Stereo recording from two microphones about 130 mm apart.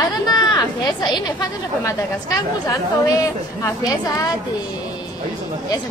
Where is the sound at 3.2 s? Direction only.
30° left (ahead or behind).